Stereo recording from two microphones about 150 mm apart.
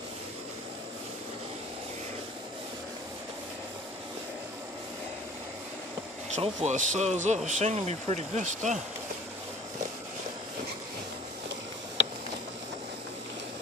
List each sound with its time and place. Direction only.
6.3 s speech: 50° right (ahead or behind)